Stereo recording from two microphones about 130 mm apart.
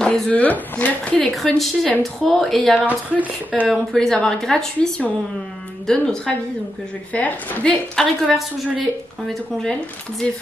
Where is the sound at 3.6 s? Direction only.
5° left (ahead or behind).